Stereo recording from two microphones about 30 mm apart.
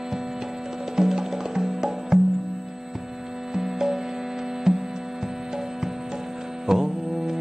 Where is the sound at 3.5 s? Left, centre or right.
Centre.